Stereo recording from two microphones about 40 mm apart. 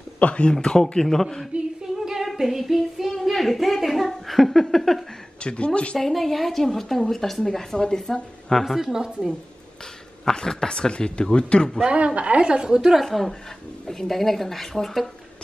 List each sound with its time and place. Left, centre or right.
0.2 s speech: left
1.0 s a woman's voice: centre
2.0 s singing: centre
3.2 s speech: centre
5.4 s speech: left
5.9 s a woman's voice: centre
8.7 s a woman's voice: centre
10.2 s speech: centre
12.2 s a woman's voice: right; by 13.0 s centre
13.0 s a woman's voice: centre